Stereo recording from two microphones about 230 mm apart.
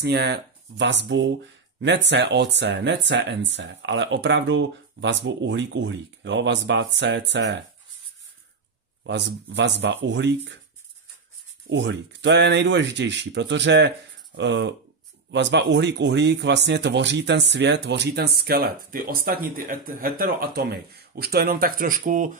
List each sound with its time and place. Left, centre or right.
0.0 s speech: right
9.0 s speech: right
11.7 s speech: right